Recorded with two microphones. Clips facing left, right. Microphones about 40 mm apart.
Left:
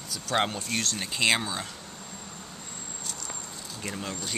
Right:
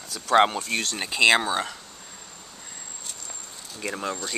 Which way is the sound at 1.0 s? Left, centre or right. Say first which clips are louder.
Right 7 dB; right.